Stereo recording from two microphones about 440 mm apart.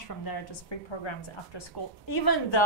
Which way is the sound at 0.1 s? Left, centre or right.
Left.